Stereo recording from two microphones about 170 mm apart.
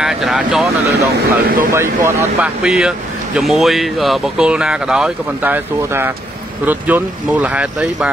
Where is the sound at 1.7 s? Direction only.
15° right (ahead or behind).